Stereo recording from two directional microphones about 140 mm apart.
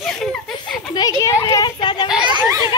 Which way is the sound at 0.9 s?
25° left (ahead or behind).